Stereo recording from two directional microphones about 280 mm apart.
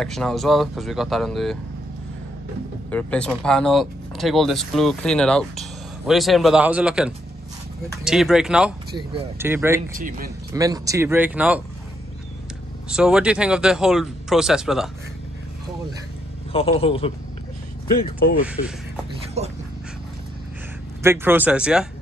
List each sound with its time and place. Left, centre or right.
0.0 s speech: centre
2.9 s speech: centre
9.9 s a man's voice: right
10.5 s speech: centre
12.9 s speech: centre
16.5 s a man's voice: centre
19.4 s a man's voice: right
21.0 s speech: centre